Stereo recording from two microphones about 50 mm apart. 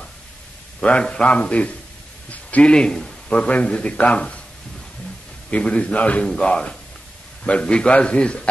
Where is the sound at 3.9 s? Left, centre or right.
Left.